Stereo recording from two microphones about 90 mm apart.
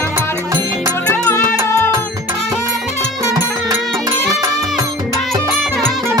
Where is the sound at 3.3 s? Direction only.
45° right (ahead or behind).